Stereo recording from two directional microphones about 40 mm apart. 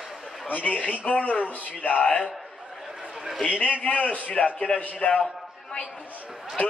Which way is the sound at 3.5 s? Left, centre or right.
Left.